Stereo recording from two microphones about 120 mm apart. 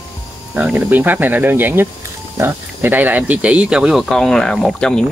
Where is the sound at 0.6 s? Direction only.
15° right (ahead or behind).